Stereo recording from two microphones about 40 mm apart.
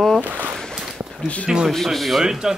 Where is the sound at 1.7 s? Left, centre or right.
Centre.